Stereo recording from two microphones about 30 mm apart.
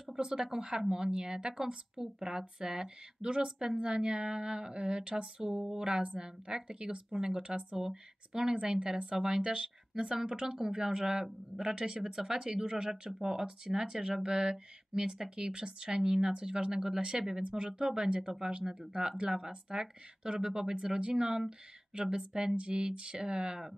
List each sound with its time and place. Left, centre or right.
0.1 s speech: right
10.4 s speech: centre